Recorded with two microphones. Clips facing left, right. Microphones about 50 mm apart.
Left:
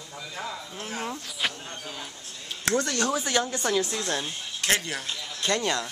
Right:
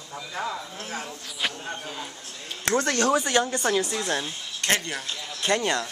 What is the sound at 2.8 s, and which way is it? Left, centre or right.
Speech, right.